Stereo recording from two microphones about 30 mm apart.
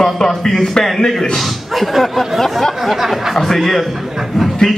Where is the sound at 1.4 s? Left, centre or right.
Centre.